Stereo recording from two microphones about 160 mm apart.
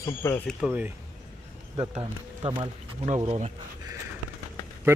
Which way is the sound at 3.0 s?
45° right (ahead or behind).